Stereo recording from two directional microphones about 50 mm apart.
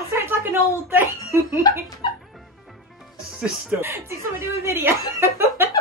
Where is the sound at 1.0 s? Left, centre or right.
Right.